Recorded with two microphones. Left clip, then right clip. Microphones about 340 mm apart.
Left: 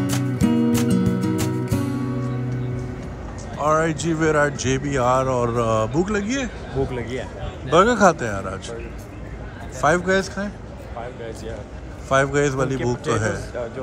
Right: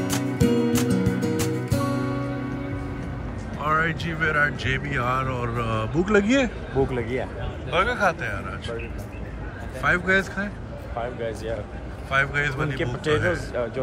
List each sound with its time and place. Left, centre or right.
0.0 s music: centre
3.6 s speech: centre
7.7 s speech: centre
9.8 s speech: centre
11.0 s a sound: right
12.1 s speech: centre
13.3 s a man's voice: right